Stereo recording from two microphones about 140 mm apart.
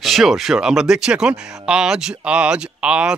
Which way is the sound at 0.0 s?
Centre (ahead or behind).